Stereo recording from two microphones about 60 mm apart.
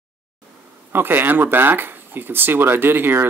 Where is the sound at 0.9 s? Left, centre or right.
Right.